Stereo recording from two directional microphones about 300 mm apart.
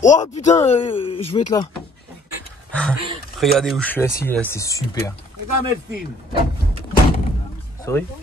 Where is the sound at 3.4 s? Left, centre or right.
Centre.